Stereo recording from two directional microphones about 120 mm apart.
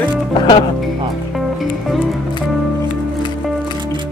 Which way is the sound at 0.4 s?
35° left (ahead or behind).